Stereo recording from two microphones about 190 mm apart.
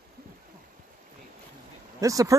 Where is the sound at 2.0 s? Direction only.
15° right (ahead or behind).